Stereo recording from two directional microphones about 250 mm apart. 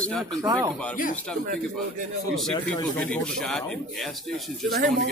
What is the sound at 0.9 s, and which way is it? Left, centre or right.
Speech, left.